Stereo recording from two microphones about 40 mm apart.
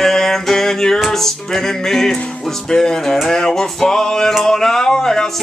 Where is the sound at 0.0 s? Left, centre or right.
Centre.